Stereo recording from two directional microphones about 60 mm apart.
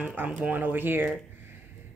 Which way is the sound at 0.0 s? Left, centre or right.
Right.